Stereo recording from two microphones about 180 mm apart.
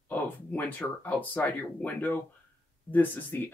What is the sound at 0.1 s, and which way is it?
Speech, 10° left (ahead or behind).